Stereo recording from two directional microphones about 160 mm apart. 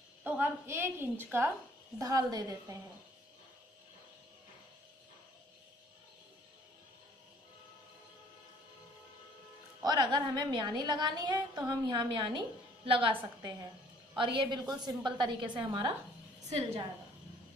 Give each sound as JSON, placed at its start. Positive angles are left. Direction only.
{"t": 0.2, "sound": "a woman's voice", "side_deg": -10}
{"t": 9.8, "sound": "a woman's voice", "side_deg": -25}